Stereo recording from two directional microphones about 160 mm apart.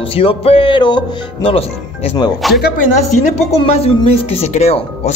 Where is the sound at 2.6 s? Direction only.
60° left (ahead or behind).